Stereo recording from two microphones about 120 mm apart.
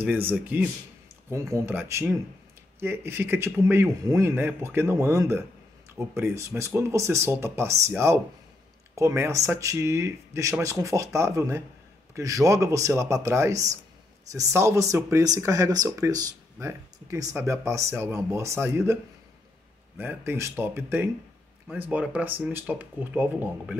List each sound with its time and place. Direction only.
0.0 s speech: 15° right (ahead or behind)
20.0 s speech: 15° right (ahead or behind)